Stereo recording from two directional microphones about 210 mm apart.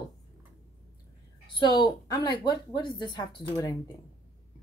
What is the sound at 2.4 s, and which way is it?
Speech, 20° left (ahead or behind).